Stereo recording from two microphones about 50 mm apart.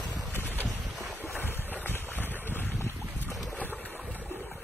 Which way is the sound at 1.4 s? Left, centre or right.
Left.